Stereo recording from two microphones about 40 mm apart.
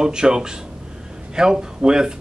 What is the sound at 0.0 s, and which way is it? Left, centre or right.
Speech, centre.